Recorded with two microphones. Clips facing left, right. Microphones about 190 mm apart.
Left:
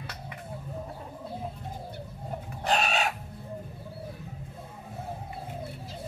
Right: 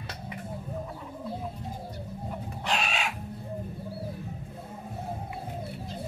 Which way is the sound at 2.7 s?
40° left (ahead or behind).